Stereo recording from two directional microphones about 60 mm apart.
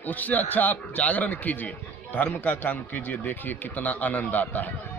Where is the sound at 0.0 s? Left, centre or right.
Left.